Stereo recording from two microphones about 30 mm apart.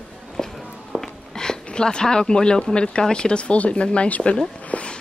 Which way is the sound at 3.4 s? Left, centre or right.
Left.